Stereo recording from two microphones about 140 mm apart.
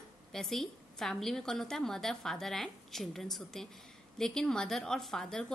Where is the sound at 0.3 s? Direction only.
5° left (ahead or behind).